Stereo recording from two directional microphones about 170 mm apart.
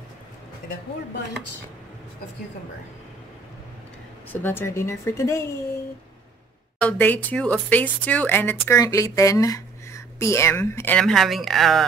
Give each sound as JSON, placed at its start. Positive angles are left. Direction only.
{"t": 4.3, "sound": "speech", "side_deg": 10}
{"t": 6.8, "sound": "speech", "side_deg": 10}